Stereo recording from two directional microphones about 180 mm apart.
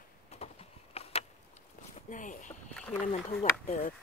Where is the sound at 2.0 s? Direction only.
45° left (ahead or behind).